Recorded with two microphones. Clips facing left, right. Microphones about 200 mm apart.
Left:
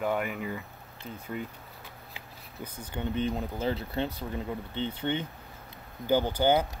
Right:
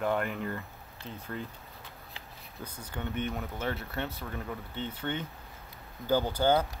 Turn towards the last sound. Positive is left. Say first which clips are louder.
# left 1 dB
turn(degrees=20)  # may be behind; listen again after turning